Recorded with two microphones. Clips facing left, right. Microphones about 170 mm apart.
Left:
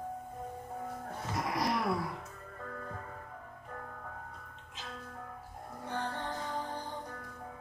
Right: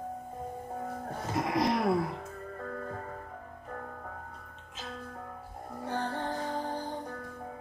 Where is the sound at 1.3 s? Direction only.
25° right (ahead or behind).